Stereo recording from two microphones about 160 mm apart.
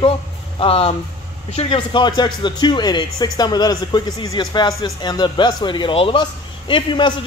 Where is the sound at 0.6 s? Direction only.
35° left (ahead or behind).